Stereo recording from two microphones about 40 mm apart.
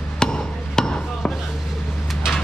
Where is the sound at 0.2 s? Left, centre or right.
Centre.